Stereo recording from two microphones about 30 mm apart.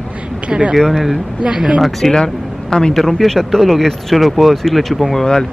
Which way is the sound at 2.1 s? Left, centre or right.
Left.